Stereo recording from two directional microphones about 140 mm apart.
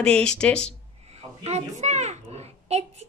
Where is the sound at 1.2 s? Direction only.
50° right (ahead or behind).